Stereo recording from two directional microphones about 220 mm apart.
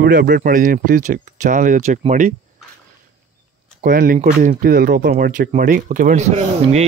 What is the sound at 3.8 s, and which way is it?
Speech, 40° right (ahead or behind).